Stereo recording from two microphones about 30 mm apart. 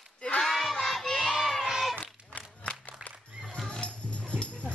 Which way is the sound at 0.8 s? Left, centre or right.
Centre.